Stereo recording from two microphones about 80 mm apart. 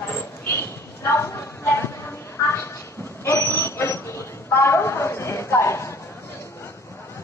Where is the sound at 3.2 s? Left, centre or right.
Left.